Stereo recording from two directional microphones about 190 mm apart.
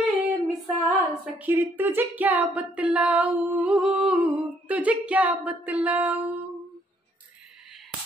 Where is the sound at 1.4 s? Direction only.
10° right (ahead or behind).